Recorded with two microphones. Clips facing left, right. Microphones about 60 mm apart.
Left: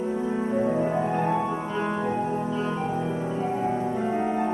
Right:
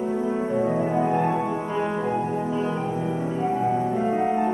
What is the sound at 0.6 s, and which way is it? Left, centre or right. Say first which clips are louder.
Music: right 1 dB; centre.